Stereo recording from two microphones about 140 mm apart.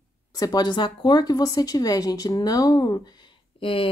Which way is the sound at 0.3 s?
25° left (ahead or behind).